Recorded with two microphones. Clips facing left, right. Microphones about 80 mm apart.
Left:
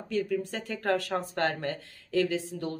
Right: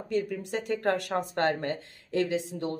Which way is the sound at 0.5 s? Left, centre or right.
Centre.